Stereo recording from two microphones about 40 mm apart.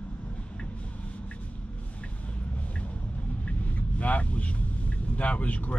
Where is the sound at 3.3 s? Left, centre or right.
Left.